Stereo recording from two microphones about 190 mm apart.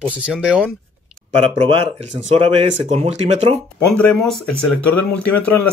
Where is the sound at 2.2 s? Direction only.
30° right (ahead or behind).